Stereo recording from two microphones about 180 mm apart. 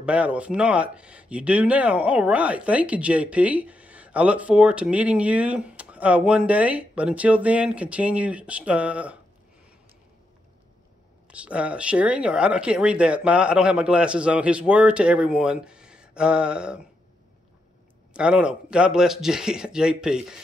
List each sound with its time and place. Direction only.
0.0 s speech: 5° right (ahead or behind)
11.2 s speech: 5° right (ahead or behind)
18.1 s speech: 5° right (ahead or behind)